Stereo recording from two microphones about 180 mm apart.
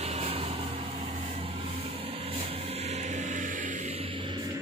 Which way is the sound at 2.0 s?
30° right (ahead or behind).